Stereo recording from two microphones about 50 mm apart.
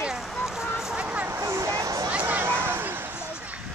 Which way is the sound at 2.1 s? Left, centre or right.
Right.